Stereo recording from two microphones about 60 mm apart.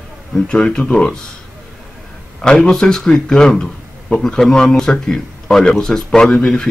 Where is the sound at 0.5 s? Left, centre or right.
Centre.